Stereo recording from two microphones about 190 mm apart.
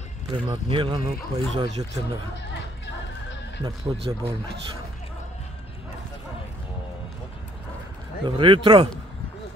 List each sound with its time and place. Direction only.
0.5 s speech: 25° right (ahead or behind)
1.6 s speech: 20° right (ahead or behind)
2.3 s music: 65° left (ahead or behind)
3.6 s speech: 30° right (ahead or behind)
8.3 s speech: 25° right (ahead or behind)